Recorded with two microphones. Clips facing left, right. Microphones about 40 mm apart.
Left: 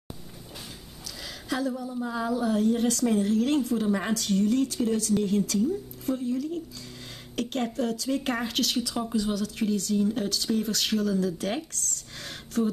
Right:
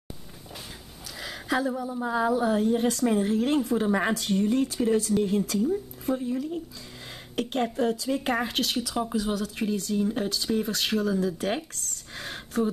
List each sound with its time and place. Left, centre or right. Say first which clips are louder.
1.2 s a woman's voice: right 3 dB; centre